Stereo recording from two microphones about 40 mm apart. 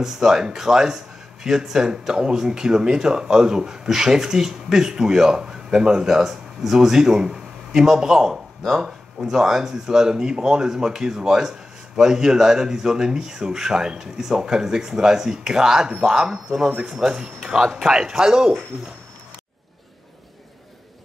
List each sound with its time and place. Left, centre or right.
0.0 s speech: centre